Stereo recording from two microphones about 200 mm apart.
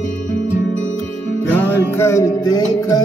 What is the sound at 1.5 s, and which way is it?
Music, 10° left (ahead or behind).